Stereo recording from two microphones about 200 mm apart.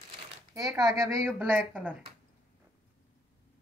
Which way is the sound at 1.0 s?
10° right (ahead or behind).